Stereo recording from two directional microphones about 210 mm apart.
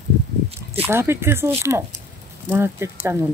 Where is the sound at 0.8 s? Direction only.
10° right (ahead or behind).